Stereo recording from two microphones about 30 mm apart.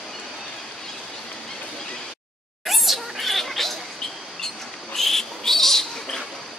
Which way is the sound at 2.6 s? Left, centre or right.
Centre.